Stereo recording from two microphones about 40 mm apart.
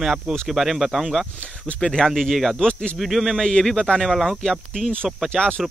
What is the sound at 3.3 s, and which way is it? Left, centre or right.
Speech, centre.